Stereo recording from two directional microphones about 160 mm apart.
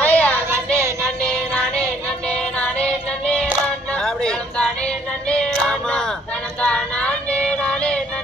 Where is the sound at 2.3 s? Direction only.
5° left (ahead or behind).